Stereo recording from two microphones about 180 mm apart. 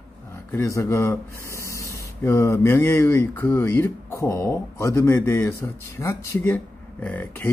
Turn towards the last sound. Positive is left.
turn(degrees=10)  # may be behind; listen again after turning